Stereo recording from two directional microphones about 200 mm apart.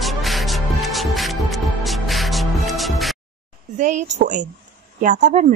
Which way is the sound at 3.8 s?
35° right (ahead or behind).